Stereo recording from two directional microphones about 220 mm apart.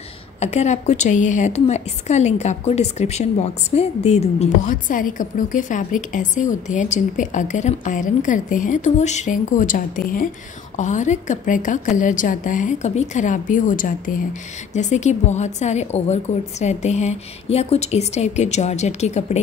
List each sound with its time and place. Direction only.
0.4 s a woman's voice: 30° left (ahead or behind)